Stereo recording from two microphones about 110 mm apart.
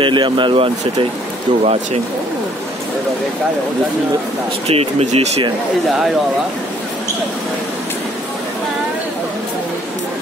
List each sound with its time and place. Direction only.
0.0 s speech: 45° right (ahead or behind)
1.6 s speech: 75° right (ahead or behind)
4.6 s speech: 65° right (ahead or behind)